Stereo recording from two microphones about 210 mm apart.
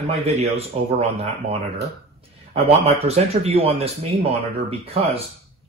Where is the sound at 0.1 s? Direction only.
30° right (ahead or behind).